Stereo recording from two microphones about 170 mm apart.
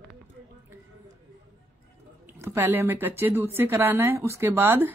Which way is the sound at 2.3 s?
15° right (ahead or behind).